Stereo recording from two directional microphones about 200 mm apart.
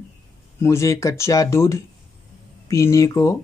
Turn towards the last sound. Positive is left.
turn(degrees=15)  # may be behind; listen again after turning